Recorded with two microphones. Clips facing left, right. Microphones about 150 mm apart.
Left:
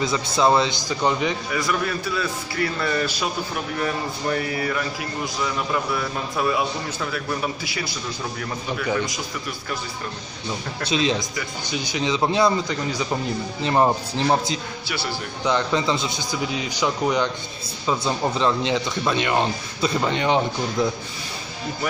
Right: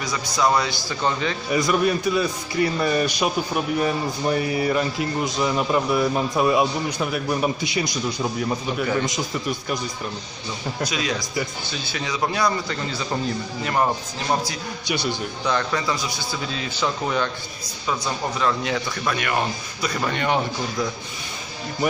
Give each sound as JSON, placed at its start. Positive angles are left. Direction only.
{"t": 0.0, "sound": "a man's voice", "side_deg": 25}
{"t": 1.5, "sound": "a man's voice", "side_deg": -20}
{"t": 10.8, "sound": "a man's voice", "side_deg": 25}
{"t": 14.9, "sound": "a man's voice", "side_deg": -20}
{"t": 15.4, "sound": "a man's voice", "side_deg": 20}